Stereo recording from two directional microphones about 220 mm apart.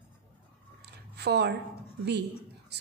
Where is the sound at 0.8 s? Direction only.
50° right (ahead or behind).